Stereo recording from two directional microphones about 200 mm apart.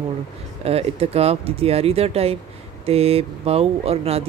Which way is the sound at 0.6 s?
30° right (ahead or behind).